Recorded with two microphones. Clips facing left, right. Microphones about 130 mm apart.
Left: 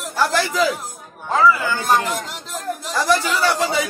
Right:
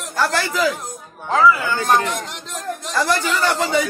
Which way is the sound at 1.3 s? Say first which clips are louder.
Right 1 dB; 5° left (ahead or behind).